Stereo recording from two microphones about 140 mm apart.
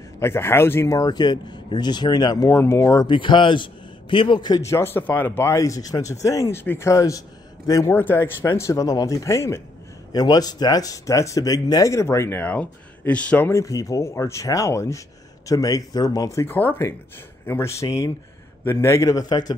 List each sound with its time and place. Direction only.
0.2 s speech: 15° left (ahead or behind)
3.1 s speech: 35° left (ahead or behind)